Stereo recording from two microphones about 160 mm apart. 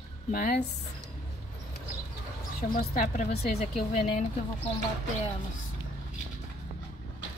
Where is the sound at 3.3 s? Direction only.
80° left.